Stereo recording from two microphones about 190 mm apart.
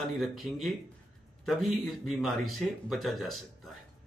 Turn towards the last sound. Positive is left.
turn(degrees=0)  # may be behind; listen again after turning